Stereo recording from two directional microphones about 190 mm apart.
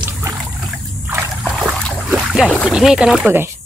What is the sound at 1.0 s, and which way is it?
Splash, 10° right (ahead or behind).